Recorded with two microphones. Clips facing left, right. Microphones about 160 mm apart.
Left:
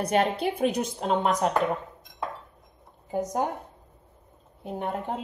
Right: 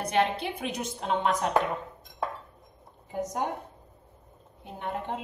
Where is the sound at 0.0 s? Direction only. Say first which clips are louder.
Left 3 dB; 40° left (ahead or behind).